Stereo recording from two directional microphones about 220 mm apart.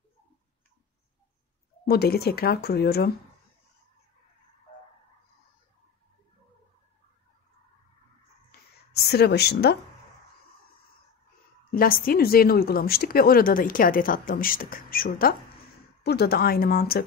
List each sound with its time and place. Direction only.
1.9 s speech: 45° left (ahead or behind)
8.5 s a sound: 45° left (ahead or behind)
11.7 s speech: 40° left (ahead or behind)